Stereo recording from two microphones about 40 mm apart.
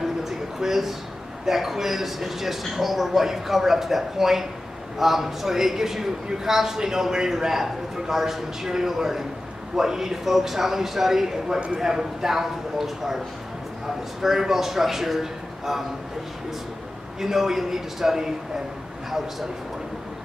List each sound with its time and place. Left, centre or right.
0.0 s a sound: centre
1.4 s a man's voice: centre
14.2 s a man's voice: centre
17.2 s a man's voice: centre